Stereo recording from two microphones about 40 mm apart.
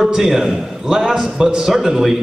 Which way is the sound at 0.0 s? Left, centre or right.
Centre.